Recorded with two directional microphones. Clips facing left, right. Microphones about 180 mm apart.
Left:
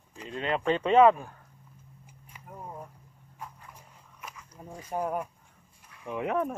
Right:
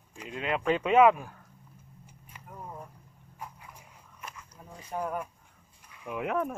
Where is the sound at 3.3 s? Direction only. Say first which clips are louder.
Even; 5° right (ahead or behind).